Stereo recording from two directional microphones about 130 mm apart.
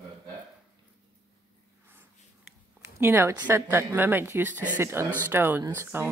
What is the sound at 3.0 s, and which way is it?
A woman's voice, 20° right (ahead or behind).